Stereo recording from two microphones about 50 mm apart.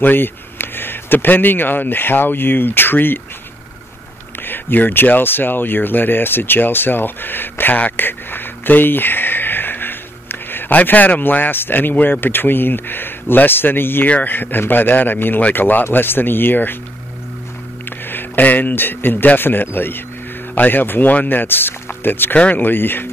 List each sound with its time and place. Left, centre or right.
0.0 s speech: left
4.4 s speech: left
14.0 s speech: left
18.0 s speech: left
22.3 s speech: left